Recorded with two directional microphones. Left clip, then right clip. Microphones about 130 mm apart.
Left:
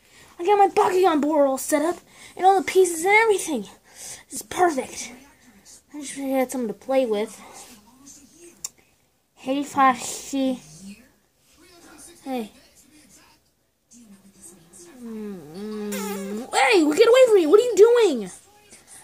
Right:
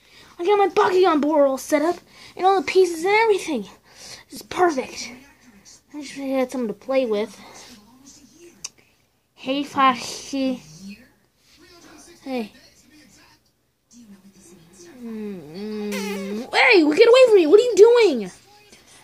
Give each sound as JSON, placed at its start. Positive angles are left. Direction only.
{"t": 0.1, "sound": "a woman's voice", "side_deg": -20}
{"t": 9.4, "sound": "a woman's voice", "side_deg": -10}
{"t": 11.8, "sound": "a sound", "side_deg": -20}
{"t": 15.0, "sound": "speech", "side_deg": -15}